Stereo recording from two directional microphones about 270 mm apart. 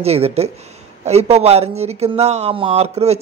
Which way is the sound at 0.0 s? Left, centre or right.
Right.